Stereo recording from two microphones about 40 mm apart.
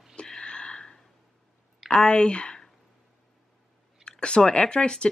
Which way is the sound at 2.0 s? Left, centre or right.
Left.